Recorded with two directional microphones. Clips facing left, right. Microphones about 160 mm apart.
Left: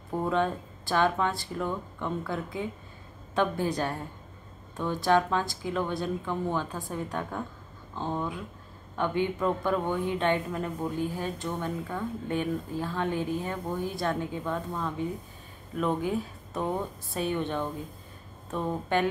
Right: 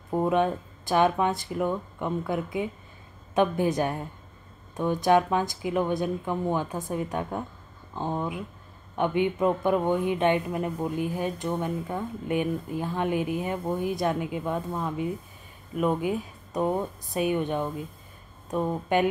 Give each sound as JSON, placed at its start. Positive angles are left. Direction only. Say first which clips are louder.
{"t": 0.1, "sound": "speech", "louder": "right 4 dB", "side_deg": -15}